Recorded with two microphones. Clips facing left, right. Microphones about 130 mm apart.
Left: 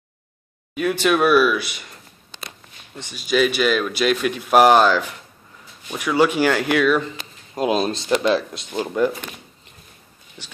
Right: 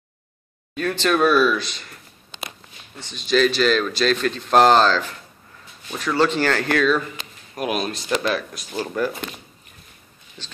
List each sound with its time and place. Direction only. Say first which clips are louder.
0.7 s speech: left 2 dB; 10° left (ahead or behind)
3.0 s speech: even; 10° left (ahead or behind)
7.0 s speech: left 3 dB; 25° left (ahead or behind)
10.4 s speech: even; 15° left (ahead or behind)